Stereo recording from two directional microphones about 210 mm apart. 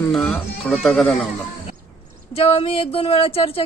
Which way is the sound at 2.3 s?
30° left (ahead or behind).